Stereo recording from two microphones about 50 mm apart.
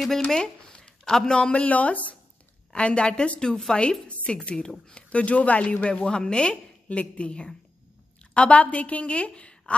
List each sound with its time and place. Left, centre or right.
0.3 s a sound: centre
1.0 s a woman's voice: centre
4.1 s a woman's voice: left